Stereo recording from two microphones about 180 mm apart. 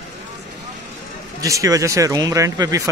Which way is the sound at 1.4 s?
20° right (ahead or behind).